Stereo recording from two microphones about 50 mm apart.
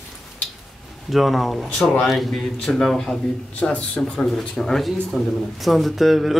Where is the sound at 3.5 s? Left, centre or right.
Left.